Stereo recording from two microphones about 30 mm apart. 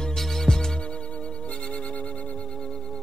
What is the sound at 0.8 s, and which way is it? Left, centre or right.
Music, left.